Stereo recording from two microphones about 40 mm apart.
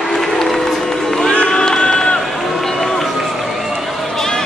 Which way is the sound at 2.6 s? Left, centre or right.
Centre.